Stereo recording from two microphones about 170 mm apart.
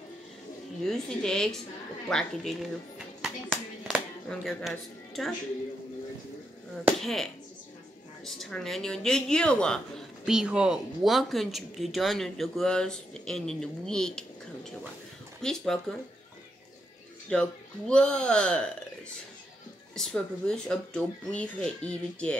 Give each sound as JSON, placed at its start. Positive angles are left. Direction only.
{"t": 0.8, "sound": "speech", "side_deg": 5}
{"t": 7.0, "sound": "speech", "side_deg": 0}
{"t": 8.4, "sound": "speech", "side_deg": 5}
{"t": 17.3, "sound": "speech", "side_deg": 5}
{"t": 20.0, "sound": "speech", "side_deg": 5}